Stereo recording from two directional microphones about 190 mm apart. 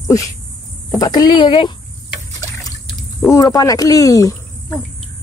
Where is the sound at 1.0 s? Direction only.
20° left (ahead or behind).